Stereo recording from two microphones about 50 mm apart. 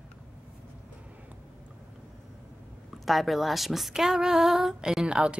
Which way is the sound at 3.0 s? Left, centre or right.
Centre.